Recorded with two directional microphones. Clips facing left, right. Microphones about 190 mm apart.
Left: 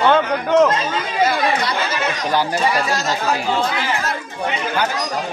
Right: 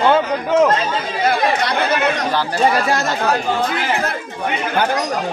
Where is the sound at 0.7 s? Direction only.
60° right (ahead or behind).